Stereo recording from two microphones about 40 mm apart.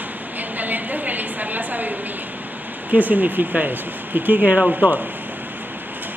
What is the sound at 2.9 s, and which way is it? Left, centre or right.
Speech, right.